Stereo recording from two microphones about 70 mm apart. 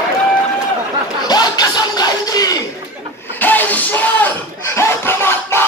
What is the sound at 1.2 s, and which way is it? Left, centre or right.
Music, left.